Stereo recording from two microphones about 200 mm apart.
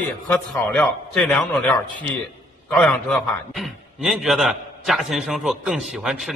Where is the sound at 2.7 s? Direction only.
5° left (ahead or behind).